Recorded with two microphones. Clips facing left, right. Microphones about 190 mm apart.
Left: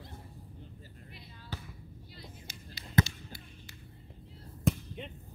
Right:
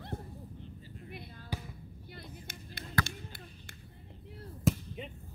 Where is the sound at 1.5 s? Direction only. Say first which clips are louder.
Right 3 dB; 10° right (ahead or behind).